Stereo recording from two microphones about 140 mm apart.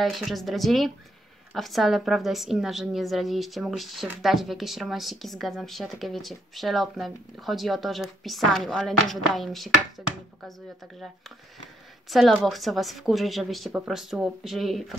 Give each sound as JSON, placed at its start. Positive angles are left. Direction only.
{"t": 0.0, "sound": "a woman's voice", "side_deg": 0}
{"t": 12.1, "sound": "a woman's voice", "side_deg": 0}